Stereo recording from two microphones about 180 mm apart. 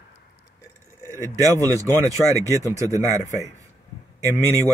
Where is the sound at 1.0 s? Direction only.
15° right (ahead or behind).